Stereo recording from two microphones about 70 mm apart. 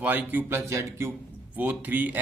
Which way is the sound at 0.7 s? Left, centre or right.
Right.